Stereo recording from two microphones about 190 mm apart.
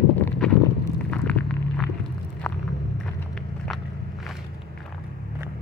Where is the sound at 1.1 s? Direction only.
5° left (ahead or behind).